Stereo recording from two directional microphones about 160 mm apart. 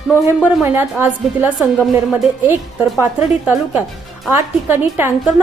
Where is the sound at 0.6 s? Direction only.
10° right (ahead or behind).